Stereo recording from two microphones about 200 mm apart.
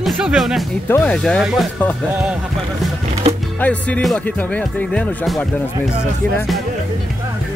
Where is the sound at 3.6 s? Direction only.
5° left (ahead or behind).